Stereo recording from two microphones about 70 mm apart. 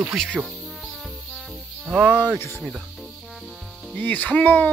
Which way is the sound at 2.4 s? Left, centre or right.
Left.